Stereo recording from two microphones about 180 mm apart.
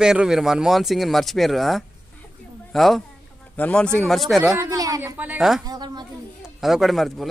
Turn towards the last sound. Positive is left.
turn(degrees=0)  # may be behind; listen again after turning